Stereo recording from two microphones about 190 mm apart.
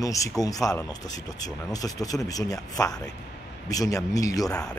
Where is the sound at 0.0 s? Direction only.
15° left (ahead or behind).